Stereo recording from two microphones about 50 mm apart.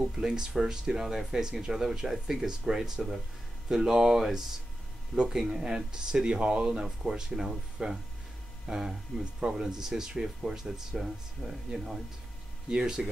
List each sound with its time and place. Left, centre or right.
0.0 s speech: centre